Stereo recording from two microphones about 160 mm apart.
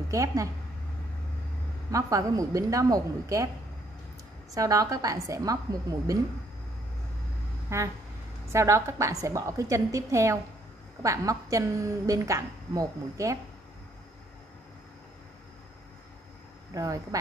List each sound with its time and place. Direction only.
0.1 s a woman's voice: 20° right (ahead or behind)
1.9 s a woman's voice: 20° right (ahead or behind)
4.6 s a woman's voice: 20° right (ahead or behind)
7.7 s a woman's voice: 15° right (ahead or behind)
16.7 s a woman's voice: 20° right (ahead or behind)